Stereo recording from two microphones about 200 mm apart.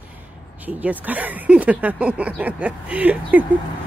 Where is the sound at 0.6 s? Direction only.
10° right (ahead or behind).